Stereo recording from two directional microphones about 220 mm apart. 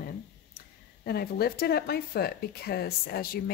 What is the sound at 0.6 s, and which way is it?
Speech, 45° left (ahead or behind).